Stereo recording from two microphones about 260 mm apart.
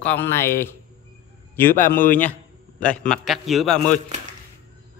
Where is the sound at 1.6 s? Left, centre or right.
Left.